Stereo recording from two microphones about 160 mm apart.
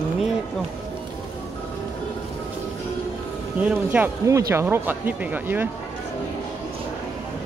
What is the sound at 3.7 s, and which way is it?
Speech, 10° right (ahead or behind).